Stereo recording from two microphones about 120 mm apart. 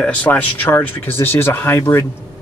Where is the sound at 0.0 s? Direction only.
10° left (ahead or behind).